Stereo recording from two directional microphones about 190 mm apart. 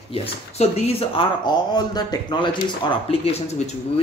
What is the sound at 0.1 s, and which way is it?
Speech, 30° left (ahead or behind).